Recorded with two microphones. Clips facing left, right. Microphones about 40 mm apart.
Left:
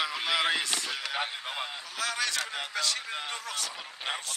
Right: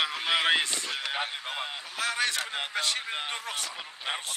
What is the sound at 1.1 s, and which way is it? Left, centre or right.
Speech, centre.